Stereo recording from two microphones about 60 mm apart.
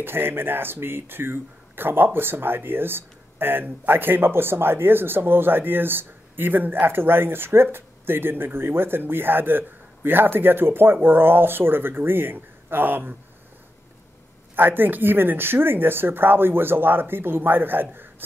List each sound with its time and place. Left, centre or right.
0.0 s speech: right
14.5 s speech: right